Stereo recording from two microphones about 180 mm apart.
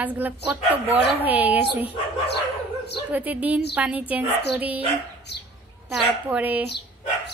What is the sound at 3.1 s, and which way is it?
A woman's voice, 10° right (ahead or behind).